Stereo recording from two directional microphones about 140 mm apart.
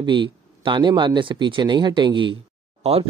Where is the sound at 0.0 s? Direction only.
35° right (ahead or behind).